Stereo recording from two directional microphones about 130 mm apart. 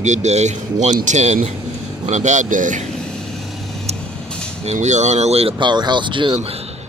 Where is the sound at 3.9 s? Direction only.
55° right (ahead or behind).